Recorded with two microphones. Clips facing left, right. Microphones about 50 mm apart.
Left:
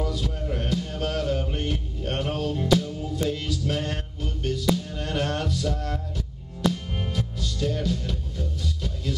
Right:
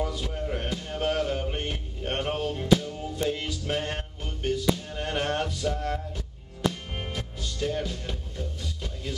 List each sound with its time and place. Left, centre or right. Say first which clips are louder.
0.0 s music: left 1 dB; centre